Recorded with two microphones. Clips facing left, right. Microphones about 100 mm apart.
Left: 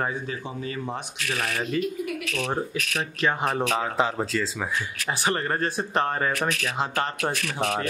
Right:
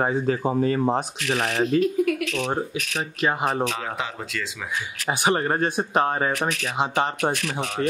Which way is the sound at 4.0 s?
35° left (ahead or behind).